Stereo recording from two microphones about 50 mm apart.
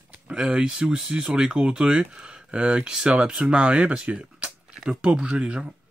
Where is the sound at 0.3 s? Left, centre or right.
Centre.